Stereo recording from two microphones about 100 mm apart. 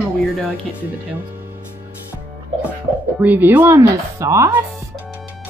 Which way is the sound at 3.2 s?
20° right (ahead or behind).